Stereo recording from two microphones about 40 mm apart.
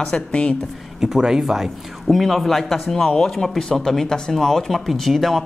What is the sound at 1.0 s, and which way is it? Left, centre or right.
Speech, centre.